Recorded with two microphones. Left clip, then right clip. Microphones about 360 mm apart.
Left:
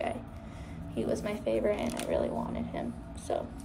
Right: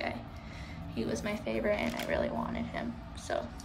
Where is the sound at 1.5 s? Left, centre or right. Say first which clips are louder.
Left 2 dB; right.